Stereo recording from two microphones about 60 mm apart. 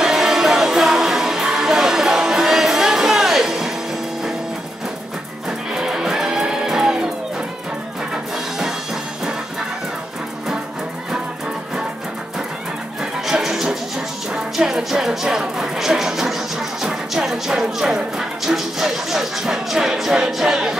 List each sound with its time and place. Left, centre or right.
0.0 s music: centre
5.7 s music: centre
8.1 s music: centre
13.0 s music: centre